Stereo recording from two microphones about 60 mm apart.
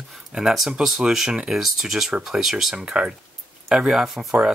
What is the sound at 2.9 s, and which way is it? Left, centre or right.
Speech, centre.